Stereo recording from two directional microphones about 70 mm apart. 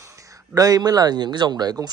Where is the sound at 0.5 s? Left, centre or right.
Right.